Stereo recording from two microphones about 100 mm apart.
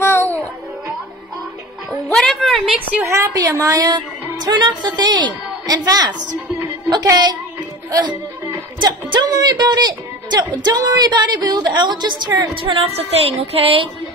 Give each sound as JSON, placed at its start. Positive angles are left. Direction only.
{"t": 0.0, "sound": "music", "side_deg": 20}
{"t": 2.1, "sound": "a sound", "side_deg": 5}
{"t": 3.3, "sound": "a woman's voice", "side_deg": -35}
{"t": 9.3, "sound": "speech", "side_deg": -40}
{"t": 12.6, "sound": "music", "side_deg": -75}